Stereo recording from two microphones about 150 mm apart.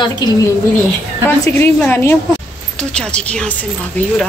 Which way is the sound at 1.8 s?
15° left (ahead or behind).